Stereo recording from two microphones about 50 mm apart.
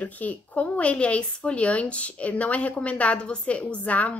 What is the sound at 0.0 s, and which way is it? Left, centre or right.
Speech, left.